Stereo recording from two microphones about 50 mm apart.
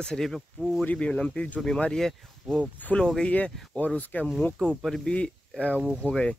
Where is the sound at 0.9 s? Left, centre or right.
Left.